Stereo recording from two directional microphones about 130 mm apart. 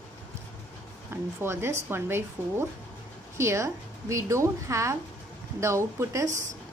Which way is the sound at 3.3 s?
20° right (ahead or behind).